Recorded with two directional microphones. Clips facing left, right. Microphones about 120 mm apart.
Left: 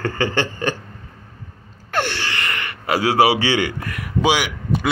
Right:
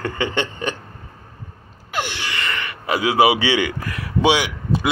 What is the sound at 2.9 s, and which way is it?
A man's voice, 20° right (ahead or behind).